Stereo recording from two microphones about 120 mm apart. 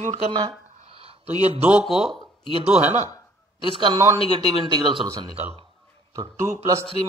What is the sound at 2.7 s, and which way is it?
Speech, 15° right (ahead or behind).